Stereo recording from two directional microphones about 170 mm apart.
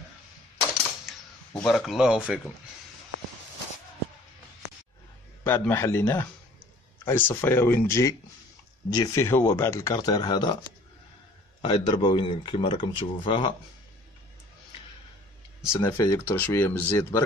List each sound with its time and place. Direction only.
1.6 s speech: centre (ahead or behind)
5.4 s speech: 15° left (ahead or behind)
11.6 s speech: 30° left (ahead or behind)
15.7 s speech: 15° left (ahead or behind)